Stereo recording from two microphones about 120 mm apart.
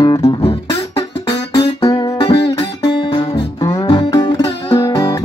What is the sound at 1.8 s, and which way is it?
Music, 35° left (ahead or behind).